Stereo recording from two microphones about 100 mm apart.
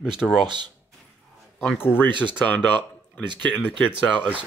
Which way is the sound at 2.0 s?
50° right (ahead or behind).